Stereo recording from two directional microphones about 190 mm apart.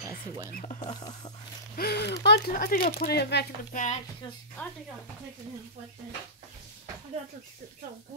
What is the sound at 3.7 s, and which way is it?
Speech, 40° left (ahead or behind).